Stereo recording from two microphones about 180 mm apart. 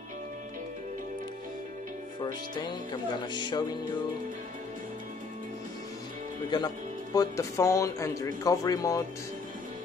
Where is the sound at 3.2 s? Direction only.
25° left (ahead or behind).